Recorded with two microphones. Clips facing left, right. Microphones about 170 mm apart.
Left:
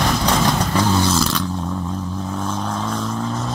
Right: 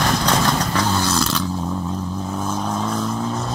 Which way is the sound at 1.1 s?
Centre (ahead or behind).